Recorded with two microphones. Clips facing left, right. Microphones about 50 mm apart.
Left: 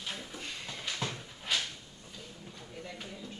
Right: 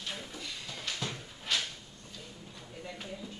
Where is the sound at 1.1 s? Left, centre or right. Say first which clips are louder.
Even; centre.